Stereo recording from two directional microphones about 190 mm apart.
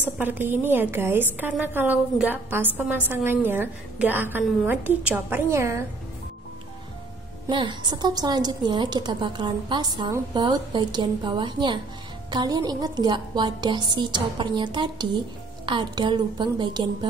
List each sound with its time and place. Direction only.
0.2 s a woman's voice: 10° right (ahead or behind)
7.4 s a woman's voice: 25° right (ahead or behind)